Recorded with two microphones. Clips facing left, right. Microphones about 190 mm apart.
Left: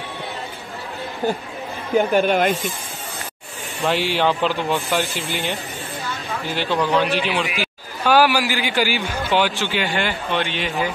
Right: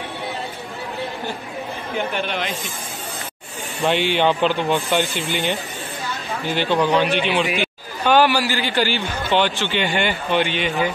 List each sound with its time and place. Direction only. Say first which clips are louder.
2.0 s speech: left 9 dB; 45° left (ahead or behind)
3.8 s a man's voice: right 1 dB; centre (ahead or behind)